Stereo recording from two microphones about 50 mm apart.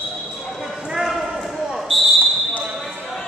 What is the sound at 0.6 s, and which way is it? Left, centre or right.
Basketball bounce, centre.